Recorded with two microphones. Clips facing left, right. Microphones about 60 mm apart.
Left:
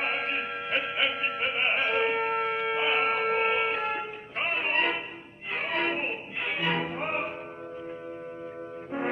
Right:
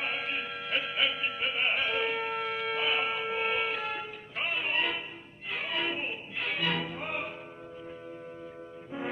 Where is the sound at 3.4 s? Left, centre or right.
Left.